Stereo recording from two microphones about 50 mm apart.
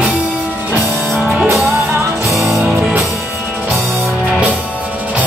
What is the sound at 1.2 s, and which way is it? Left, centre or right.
Music, centre.